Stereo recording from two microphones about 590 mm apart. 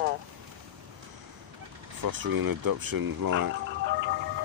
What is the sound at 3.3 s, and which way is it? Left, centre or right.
Music, centre.